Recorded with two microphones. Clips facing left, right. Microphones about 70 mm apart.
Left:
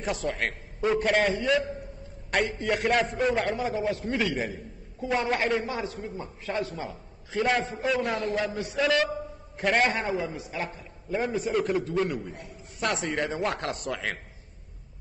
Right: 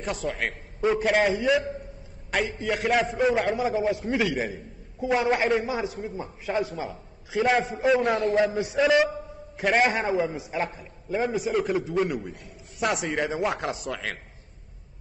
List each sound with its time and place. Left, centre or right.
0.0 s a man's voice: centre